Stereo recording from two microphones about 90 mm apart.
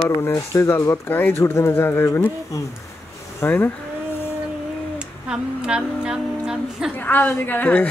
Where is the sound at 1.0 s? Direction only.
20° left (ahead or behind).